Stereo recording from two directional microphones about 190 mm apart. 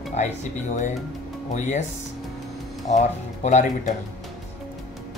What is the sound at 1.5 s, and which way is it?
Speech, 40° left (ahead or behind).